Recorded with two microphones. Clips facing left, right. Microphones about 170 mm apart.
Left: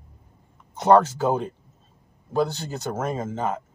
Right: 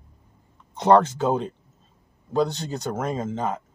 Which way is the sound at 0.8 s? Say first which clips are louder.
Even; 10° left (ahead or behind).